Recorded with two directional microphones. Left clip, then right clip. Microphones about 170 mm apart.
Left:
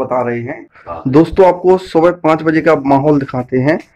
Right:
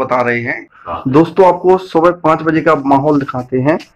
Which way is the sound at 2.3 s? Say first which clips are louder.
Left 1 dB; 20° left (ahead or behind).